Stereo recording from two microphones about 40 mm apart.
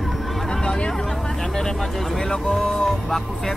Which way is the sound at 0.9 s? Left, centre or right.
Centre.